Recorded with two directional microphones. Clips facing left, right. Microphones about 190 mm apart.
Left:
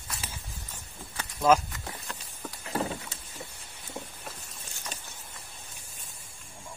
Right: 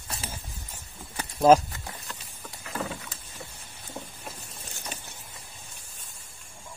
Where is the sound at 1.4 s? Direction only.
30° right (ahead or behind).